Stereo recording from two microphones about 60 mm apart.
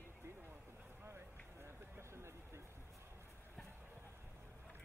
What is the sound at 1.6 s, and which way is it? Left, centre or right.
Run, right.